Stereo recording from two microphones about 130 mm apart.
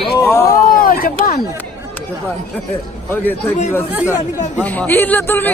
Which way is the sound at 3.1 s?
15° left (ahead or behind).